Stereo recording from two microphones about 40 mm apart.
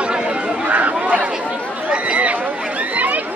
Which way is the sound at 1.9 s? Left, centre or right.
Right.